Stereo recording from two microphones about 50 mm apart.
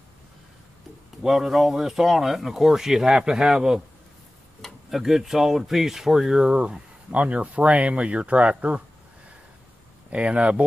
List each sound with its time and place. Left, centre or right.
1.2 s speech: centre
4.9 s speech: centre
6.6 s speech: right
10.1 s speech: right